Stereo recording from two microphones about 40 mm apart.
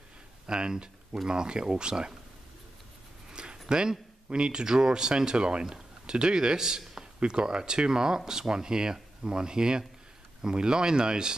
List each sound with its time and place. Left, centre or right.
0.5 s speech: right
3.3 s a sound: right
3.6 s speech: right